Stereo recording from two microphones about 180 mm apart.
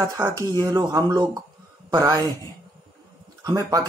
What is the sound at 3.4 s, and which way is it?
Speech, 20° right (ahead or behind).